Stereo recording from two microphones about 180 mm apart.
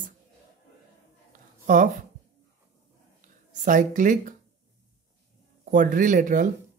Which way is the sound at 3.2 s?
45° right (ahead or behind).